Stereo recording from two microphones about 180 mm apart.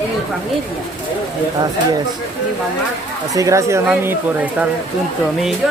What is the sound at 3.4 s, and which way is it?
Speech, 15° right (ahead or behind).